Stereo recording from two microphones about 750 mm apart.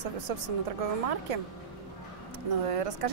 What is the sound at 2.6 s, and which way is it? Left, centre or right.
Speech, right.